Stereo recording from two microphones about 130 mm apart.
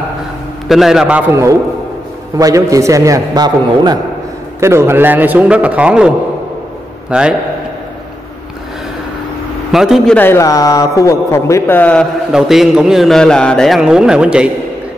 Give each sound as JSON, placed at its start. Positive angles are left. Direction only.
{"t": 0.7, "sound": "a man's voice", "side_deg": -5}
{"t": 1.3, "sound": "a man's voice", "side_deg": -25}
{"t": 4.6, "sound": "a man's voice", "side_deg": -20}
{"t": 9.7, "sound": "a man's voice", "side_deg": 0}
{"t": 10.1, "sound": "a man's voice", "side_deg": 20}
{"t": 12.3, "sound": "a man's voice", "side_deg": -5}